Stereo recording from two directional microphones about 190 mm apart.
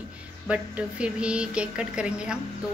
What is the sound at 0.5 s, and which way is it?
A woman's voice, 5° right (ahead or behind).